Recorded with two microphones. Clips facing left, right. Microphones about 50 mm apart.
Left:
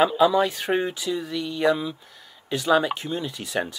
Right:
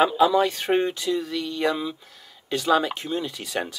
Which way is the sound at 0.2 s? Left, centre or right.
Centre.